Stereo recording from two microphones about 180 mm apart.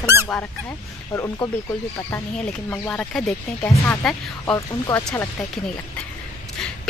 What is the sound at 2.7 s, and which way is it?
Speech, 10° left (ahead or behind).